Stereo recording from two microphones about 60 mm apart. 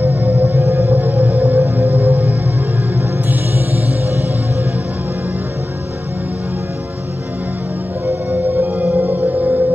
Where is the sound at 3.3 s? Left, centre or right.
Right.